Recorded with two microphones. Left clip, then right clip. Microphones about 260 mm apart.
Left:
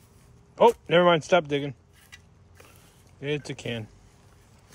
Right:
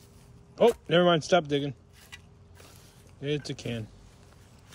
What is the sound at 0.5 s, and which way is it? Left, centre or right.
Speech, centre.